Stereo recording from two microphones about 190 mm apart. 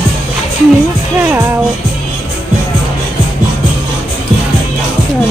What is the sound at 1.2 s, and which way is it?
Music, 10° right (ahead or behind).